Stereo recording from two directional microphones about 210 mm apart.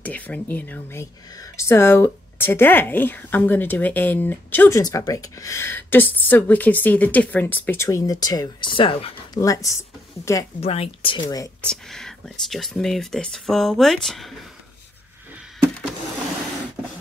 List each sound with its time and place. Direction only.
0.0 s a woman's voice: 5° left (ahead or behind)
10.6 s speech: 30° left (ahead or behind)
11.6 s speech: 5° left (ahead or behind)